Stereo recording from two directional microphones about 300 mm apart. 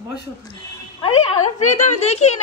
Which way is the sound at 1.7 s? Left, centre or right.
Left.